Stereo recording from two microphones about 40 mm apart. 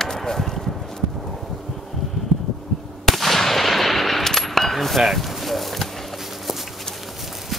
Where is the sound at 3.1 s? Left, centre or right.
Centre.